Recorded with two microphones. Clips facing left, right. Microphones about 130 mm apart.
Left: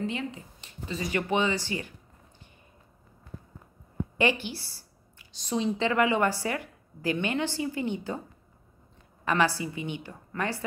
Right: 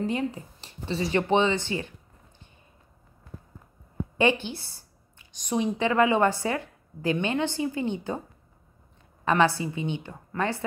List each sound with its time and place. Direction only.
0.0 s speech: 40° right (ahead or behind); by 1.9 s 25° right (ahead or behind)
4.2 s speech: 20° right (ahead or behind)
9.2 s speech: 20° right (ahead or behind)